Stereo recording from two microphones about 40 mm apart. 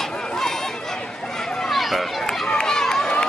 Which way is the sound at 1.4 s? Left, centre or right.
Centre.